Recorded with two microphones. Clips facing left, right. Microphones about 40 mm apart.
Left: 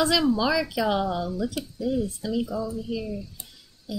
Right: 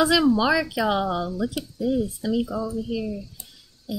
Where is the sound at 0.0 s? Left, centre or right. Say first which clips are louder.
Right 3 dB; centre.